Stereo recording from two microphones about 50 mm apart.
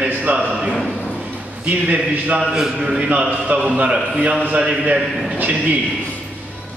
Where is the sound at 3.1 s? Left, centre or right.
Right.